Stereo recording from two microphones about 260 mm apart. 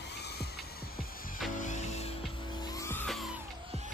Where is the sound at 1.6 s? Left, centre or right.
Left.